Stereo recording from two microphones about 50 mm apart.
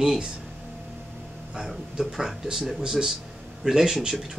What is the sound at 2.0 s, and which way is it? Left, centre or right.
Speech, centre.